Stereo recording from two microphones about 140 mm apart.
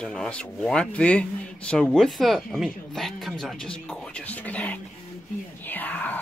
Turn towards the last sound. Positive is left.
turn(degrees=10)  # may be behind; listen again after turning